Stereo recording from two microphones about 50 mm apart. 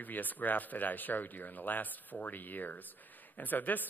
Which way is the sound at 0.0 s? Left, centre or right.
Left.